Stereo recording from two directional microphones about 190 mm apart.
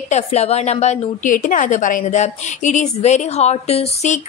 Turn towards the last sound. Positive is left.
turn(degrees=35)  # may be behind; listen again after turning